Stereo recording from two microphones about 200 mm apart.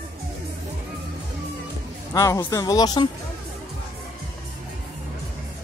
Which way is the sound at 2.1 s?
15° left (ahead or behind).